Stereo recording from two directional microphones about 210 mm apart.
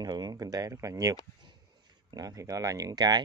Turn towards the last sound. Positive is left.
turn(degrees=-20)  # may be behind; listen again after turning